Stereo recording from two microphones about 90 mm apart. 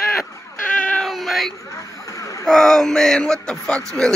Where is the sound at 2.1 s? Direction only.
35° left (ahead or behind).